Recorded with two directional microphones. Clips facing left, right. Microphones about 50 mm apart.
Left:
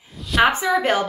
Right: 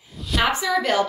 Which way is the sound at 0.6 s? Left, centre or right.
Left.